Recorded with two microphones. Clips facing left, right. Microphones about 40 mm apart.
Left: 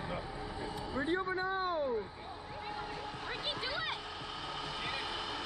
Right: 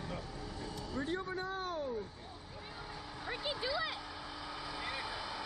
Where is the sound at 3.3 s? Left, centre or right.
Left.